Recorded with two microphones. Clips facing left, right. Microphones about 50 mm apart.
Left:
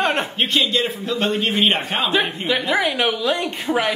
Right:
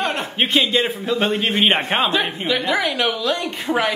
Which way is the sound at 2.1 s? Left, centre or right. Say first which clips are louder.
Even; centre.